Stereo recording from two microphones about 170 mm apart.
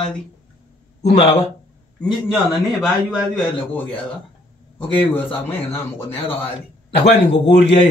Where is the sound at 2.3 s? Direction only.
Centre (ahead or behind).